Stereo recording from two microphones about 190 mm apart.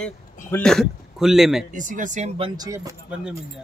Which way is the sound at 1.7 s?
40° right (ahead or behind).